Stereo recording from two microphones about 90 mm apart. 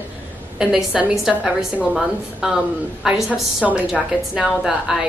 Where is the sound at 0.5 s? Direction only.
5° right (ahead or behind).